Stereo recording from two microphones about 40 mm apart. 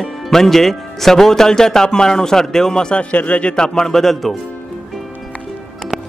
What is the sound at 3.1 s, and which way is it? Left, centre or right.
Speech, left.